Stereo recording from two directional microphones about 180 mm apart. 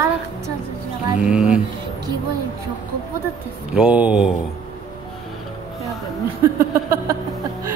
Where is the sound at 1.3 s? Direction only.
5° right (ahead or behind).